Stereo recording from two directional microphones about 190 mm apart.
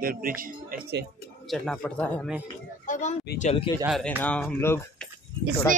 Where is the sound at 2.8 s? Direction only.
40° left (ahead or behind).